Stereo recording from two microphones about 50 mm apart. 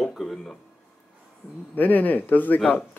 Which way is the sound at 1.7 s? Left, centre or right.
Left.